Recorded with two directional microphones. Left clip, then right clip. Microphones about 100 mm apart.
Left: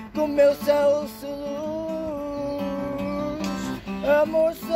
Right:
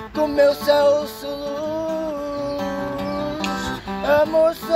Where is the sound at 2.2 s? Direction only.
35° left (ahead or behind).